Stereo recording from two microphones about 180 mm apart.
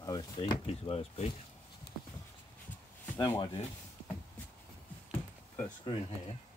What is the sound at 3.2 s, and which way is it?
Speech, 20° left (ahead or behind).